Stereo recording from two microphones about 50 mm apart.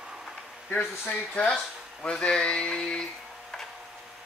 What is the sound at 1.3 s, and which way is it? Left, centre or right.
Speech, left.